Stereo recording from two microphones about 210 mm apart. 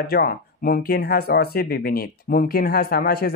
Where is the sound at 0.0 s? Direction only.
45° left (ahead or behind).